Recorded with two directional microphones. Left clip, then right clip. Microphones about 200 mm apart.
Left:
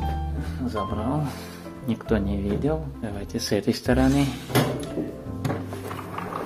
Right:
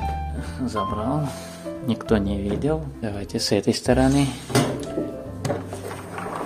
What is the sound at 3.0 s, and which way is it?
Speech, 25° right (ahead or behind).